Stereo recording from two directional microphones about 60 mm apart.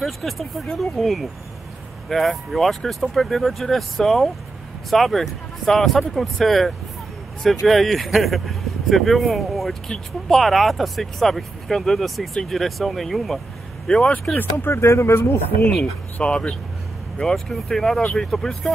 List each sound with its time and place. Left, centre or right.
0.0 s speech: centre
14.3 s speech: left
14.7 s speech: left
16.2 s speech: centre
17.2 s speech: centre